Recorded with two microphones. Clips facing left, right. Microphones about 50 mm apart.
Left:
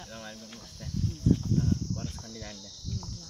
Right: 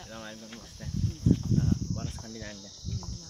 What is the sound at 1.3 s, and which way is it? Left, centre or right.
Speech, right.